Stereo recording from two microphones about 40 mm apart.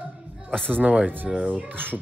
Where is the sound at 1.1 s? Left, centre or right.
Right.